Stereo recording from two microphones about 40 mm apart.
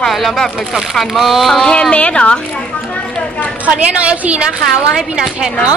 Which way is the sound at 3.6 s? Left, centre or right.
Right.